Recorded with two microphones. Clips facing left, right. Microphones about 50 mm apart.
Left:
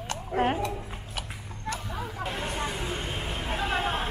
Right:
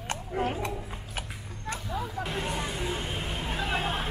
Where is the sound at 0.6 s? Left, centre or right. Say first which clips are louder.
Left 2 dB; right.